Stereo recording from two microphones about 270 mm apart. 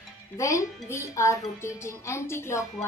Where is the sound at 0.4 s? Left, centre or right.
Centre.